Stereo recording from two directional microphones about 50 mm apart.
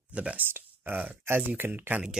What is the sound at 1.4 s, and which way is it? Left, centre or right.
Speech, right.